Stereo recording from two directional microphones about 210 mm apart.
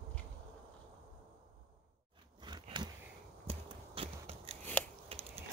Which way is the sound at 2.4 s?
20° right (ahead or behind).